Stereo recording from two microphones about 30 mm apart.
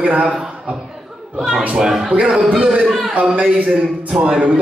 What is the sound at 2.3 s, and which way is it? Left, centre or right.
Speech, right.